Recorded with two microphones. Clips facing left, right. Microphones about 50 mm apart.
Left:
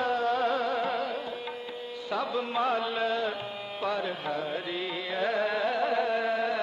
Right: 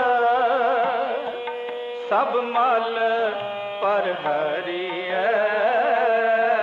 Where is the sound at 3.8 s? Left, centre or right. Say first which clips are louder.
Right 9 dB; right.